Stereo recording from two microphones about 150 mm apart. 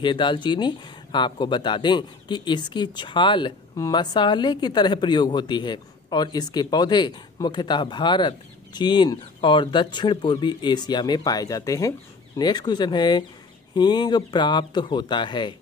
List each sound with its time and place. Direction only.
0.0 s speech: 35° left (ahead or behind)